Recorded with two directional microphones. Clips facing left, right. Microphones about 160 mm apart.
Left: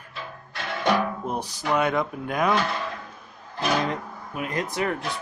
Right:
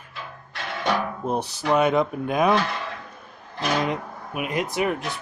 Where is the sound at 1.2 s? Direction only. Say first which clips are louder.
Right 3 dB; 25° right (ahead or behind).